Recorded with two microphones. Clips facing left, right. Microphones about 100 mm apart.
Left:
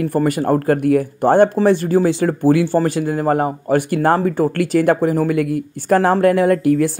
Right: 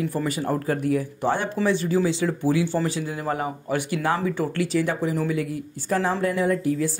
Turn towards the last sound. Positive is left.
turn(degrees=65)  # may be behind; listen again after turning